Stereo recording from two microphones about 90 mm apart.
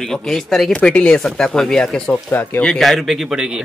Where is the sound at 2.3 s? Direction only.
20° left (ahead or behind).